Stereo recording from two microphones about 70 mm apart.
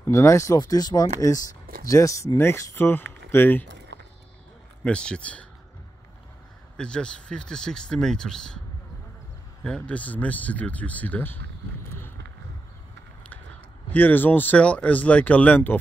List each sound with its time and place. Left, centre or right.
0.1 s speech: left
0.6 s speech: left
4.8 s speech: centre
6.8 s speech: centre
9.6 s speech: centre
13.8 s speech: left